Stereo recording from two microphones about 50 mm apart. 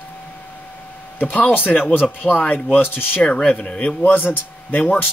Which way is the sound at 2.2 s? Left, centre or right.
Left.